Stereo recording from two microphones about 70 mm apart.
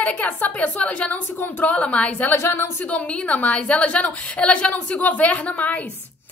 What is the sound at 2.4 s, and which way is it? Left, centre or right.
Speech, left.